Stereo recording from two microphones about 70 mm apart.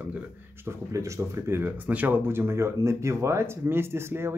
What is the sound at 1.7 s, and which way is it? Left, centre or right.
A man's voice, right.